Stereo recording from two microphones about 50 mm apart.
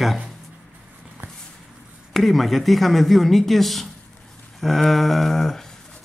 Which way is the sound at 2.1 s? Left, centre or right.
Centre.